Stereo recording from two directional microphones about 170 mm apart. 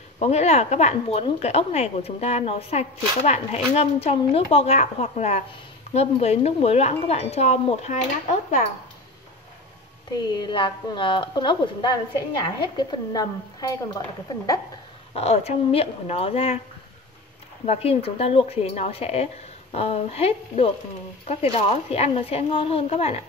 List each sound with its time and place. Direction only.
0.2 s speech: 40° left (ahead or behind)
10.1 s a woman's voice: 25° left (ahead or behind)
15.1 s speech: 35° left (ahead or behind)
17.6 s speech: 35° left (ahead or behind)